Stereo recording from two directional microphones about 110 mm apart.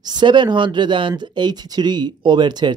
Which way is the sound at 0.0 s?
40° right (ahead or behind).